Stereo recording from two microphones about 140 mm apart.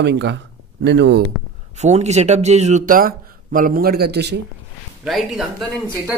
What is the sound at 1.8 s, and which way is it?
Speech, 55° right (ahead or behind).